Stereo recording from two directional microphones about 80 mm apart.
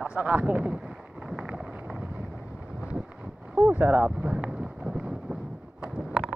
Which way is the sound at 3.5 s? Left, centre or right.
Right.